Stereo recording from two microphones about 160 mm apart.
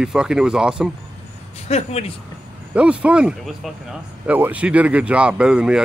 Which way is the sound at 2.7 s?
5° right (ahead or behind).